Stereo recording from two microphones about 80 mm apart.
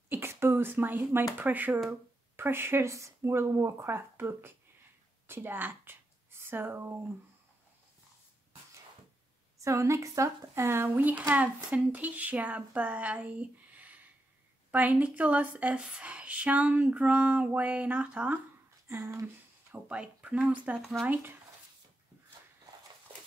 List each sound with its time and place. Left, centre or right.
0.1 s speech: right
9.6 s a woman's voice: right; by 18.4 s centre
18.9 s speech: right
19.7 s a woman's voice: centre